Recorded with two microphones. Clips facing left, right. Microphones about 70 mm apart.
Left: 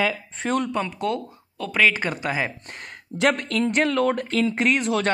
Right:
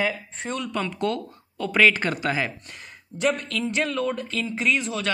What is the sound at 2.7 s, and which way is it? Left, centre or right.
Speech, left.